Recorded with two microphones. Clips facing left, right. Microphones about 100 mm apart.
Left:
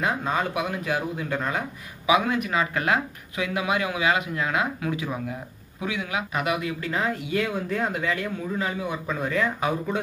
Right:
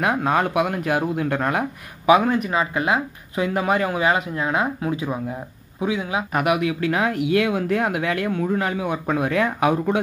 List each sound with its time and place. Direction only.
0.0 s speech: 60° right (ahead or behind); by 2.6 s 35° right (ahead or behind)
2.6 s speech: 20° right (ahead or behind)
3.3 s speech: 40° right (ahead or behind)
6.3 s speech: 65° right (ahead or behind)